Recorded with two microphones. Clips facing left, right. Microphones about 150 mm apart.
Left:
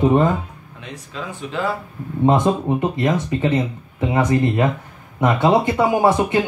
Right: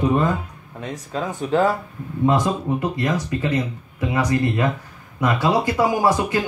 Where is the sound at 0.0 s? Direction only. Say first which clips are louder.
Left 4 dB; 25° left (ahead or behind).